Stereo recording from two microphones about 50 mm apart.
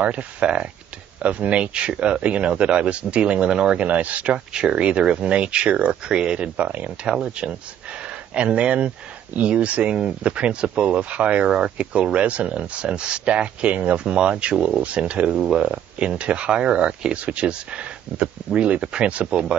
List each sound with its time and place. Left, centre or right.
0.0 s speech: right
3.8 s speech: right
7.1 s speech: centre